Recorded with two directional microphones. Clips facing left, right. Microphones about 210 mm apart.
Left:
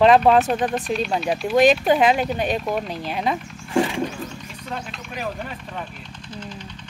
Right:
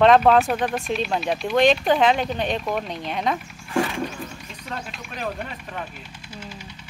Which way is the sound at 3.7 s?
20° left (ahead or behind).